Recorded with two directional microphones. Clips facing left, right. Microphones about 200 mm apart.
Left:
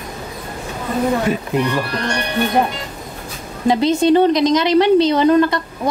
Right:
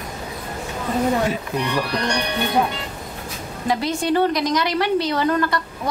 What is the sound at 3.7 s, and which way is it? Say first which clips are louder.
A woman's voice: left 8 dB; 20° left (ahead or behind).